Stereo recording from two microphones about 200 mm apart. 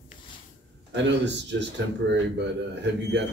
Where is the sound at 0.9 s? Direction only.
60° right (ahead or behind).